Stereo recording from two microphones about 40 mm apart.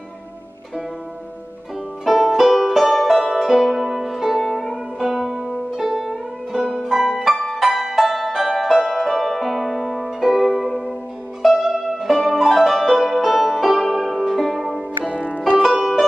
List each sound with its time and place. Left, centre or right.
2.0 s music: centre
2.3 s music: centre
6.5 s music: centre
7.2 s music: centre
15.1 s music: left
15.6 s music: centre